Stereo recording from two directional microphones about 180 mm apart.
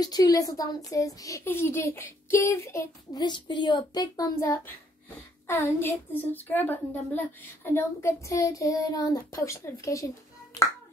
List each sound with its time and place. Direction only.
0.0 s a woman's voice: 20° left (ahead or behind)